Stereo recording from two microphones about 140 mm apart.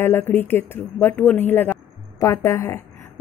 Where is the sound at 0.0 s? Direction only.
15° left (ahead or behind).